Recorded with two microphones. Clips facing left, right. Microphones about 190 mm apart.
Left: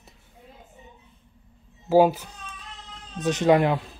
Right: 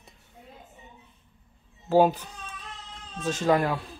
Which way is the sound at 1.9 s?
10° left (ahead or behind).